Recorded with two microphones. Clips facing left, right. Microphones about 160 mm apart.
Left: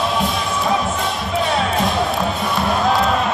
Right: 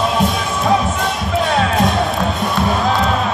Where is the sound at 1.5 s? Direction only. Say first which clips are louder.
Right 4 dB; centre (ahead or behind).